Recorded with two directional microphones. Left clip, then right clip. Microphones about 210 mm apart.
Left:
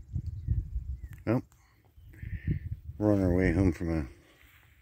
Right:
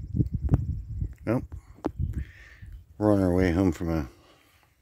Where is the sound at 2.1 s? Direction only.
20° right (ahead or behind).